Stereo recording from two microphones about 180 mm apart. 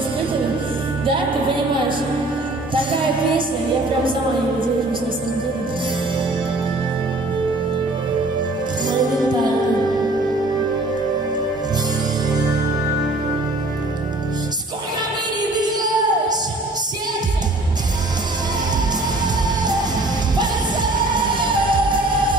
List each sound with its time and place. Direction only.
2.7 s music: 30° right (ahead or behind)
15.5 s music: 20° right (ahead or behind)
21.4 s music: 25° right (ahead or behind)